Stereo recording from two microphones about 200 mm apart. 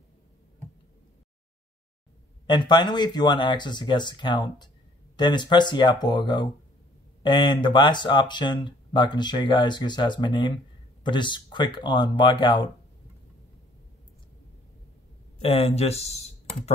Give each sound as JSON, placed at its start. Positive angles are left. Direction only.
{"t": 2.4, "sound": "speech", "side_deg": 25}
{"t": 15.4, "sound": "speech", "side_deg": 30}